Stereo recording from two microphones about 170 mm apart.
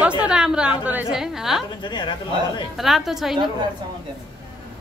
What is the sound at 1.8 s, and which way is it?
Speech, 25° left (ahead or behind).